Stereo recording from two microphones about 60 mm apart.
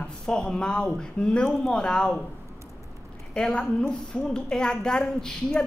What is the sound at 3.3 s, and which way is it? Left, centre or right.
A man's voice, centre.